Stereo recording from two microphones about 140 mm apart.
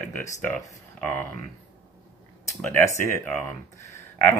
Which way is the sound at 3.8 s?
20° left (ahead or behind).